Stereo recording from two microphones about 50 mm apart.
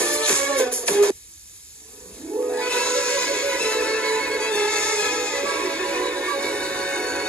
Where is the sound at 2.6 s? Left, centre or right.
Left.